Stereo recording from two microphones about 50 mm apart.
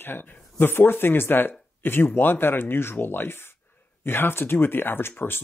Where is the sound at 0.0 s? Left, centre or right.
Left.